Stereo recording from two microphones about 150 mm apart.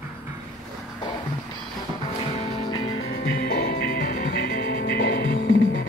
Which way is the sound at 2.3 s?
35° left (ahead or behind).